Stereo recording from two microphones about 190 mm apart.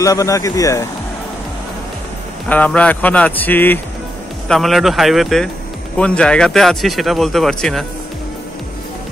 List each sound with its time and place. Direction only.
0.0 s speech: 15° left (ahead or behind)
2.5 s speech: 5° left (ahead or behind)